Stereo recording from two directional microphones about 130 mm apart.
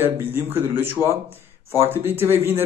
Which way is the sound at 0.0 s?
15° right (ahead or behind).